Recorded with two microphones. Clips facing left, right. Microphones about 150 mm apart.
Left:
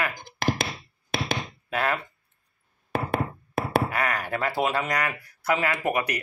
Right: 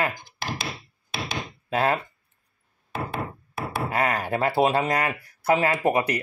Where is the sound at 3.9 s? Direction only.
30° right (ahead or behind).